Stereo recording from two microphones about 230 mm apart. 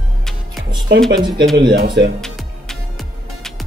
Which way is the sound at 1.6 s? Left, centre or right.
Right.